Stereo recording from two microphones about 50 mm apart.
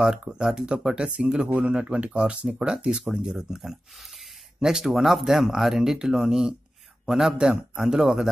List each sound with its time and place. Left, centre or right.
0.0 s speech: centre